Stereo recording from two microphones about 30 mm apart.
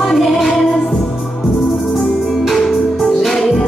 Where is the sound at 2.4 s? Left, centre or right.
Centre.